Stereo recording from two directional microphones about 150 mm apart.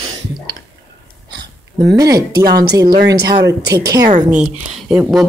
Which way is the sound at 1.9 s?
25° right (ahead or behind).